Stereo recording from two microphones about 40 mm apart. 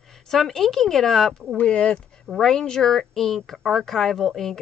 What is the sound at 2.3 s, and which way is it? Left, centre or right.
Speech, centre.